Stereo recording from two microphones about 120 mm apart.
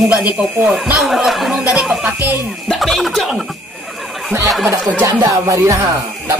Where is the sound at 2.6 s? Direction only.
Centre (ahead or behind).